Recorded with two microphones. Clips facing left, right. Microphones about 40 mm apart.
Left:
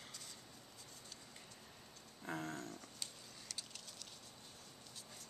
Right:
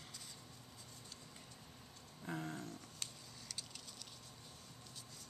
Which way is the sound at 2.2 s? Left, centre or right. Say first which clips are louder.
Even; centre.